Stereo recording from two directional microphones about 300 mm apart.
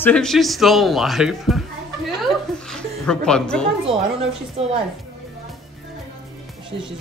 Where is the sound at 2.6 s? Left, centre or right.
Centre.